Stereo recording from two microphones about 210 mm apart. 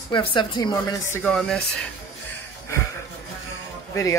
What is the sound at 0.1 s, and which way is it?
Speech, 25° left (ahead or behind).